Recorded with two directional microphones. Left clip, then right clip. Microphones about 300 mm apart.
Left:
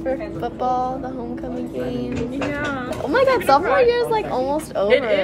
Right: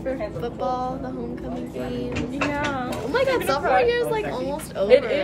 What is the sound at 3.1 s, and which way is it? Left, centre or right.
Speech, centre.